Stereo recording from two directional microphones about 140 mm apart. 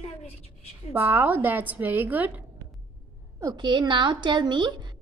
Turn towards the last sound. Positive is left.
turn(degrees=-35)  # may be behind; listen again after turning